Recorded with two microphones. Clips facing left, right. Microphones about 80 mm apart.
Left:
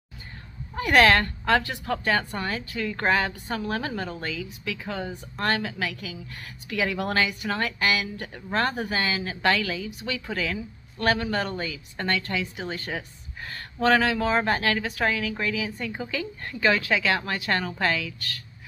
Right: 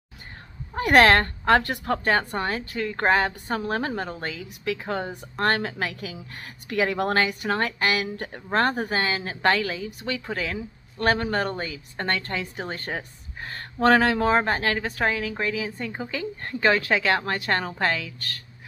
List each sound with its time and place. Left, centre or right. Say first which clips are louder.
0.7 s a woman's voice: right 2 dB; right
8.4 s a woman's voice: right 3 dB; right
14.4 s a woman's voice: even; right